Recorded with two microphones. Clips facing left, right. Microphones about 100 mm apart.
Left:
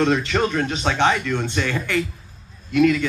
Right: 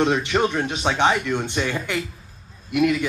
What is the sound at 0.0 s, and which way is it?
Speech, 15° right (ahead or behind).